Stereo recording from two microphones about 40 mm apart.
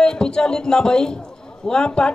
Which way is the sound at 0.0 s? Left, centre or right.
Left.